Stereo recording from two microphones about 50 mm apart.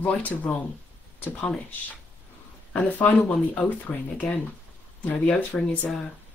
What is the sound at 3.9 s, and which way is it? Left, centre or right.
Speech, left.